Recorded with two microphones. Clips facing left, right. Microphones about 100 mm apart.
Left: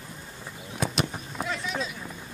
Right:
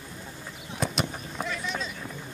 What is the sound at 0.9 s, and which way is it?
Vehicle, centre (ahead or behind).